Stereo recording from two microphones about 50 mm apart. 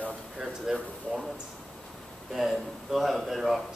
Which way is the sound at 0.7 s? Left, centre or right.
Centre.